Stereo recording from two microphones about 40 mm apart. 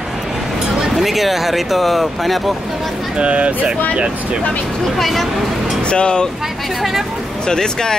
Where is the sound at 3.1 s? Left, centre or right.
Right.